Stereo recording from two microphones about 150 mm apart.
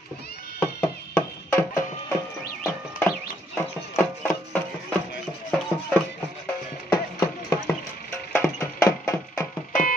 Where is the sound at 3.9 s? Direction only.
10° left (ahead or behind).